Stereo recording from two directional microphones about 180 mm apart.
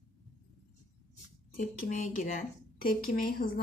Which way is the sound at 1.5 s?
45° left (ahead or behind).